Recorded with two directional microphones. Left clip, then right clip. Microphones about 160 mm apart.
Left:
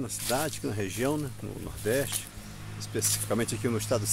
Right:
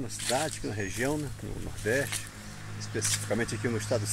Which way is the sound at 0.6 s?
35° left (ahead or behind).